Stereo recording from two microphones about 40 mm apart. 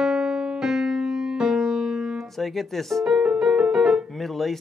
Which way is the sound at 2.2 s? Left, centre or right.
Centre.